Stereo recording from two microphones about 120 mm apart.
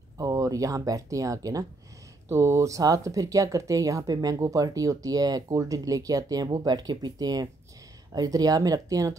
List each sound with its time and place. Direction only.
0.2 s speech: 30° right (ahead or behind)